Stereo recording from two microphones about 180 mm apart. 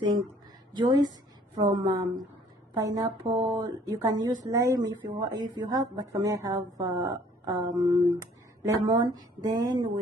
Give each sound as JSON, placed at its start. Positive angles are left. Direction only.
{"t": 0.7, "sound": "a woman's voice", "side_deg": -25}